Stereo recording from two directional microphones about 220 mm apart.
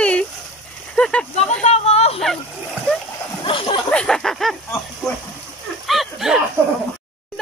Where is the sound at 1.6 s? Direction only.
30° left (ahead or behind).